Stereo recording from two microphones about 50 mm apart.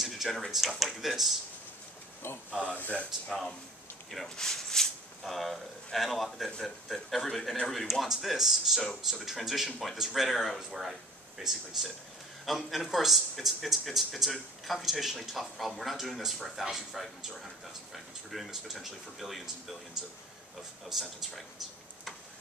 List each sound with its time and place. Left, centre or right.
0.0 s speech: centre
2.2 s speech: left
2.6 s speech: left
3.3 s speech: centre
9.7 s speech: centre